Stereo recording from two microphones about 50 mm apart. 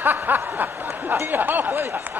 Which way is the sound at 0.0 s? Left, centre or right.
Right.